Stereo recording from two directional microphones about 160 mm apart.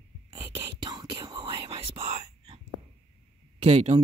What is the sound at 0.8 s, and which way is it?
Whispering, 30° right (ahead or behind).